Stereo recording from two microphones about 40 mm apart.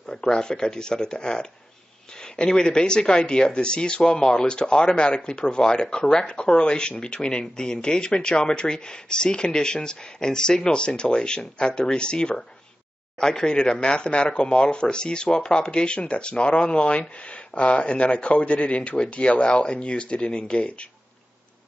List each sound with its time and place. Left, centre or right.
0.0 s speech: centre